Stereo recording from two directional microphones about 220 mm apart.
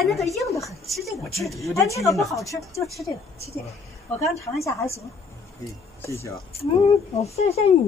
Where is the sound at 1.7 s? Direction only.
15° left (ahead or behind).